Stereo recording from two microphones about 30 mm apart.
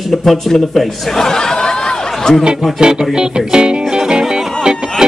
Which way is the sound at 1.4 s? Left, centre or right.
Left.